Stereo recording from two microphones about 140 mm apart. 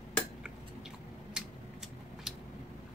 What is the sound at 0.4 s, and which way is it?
Chewing, 5° right (ahead or behind).